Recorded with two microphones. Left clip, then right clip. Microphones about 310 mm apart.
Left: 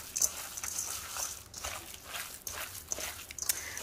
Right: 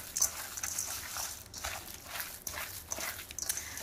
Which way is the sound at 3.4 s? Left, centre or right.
Right.